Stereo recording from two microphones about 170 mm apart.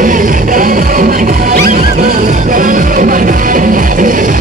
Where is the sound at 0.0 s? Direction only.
50° right (ahead or behind).